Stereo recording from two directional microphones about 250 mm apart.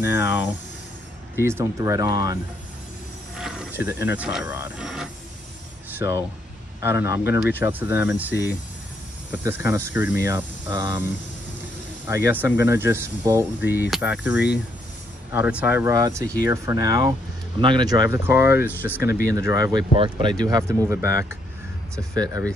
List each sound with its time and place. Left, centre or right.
0.0 s speech: centre
3.3 s cricket: centre
4.1 s speech: centre
9.3 s speech: centre
12.1 s speech: centre
15.3 s speech: centre